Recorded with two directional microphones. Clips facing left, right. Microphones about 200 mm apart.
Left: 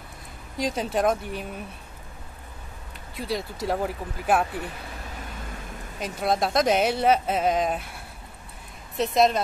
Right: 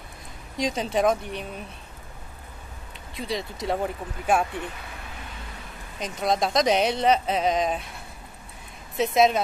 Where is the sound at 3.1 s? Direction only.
5° left (ahead or behind).